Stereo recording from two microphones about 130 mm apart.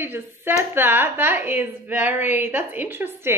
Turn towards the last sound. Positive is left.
turn(degrees=-15)  # may be behind; listen again after turning